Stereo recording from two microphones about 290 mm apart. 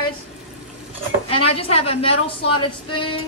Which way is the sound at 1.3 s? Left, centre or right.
Centre.